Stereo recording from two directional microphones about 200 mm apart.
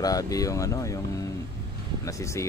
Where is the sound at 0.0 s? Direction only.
15° left (ahead or behind).